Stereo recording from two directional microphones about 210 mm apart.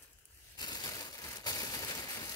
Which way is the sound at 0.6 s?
20° left (ahead or behind).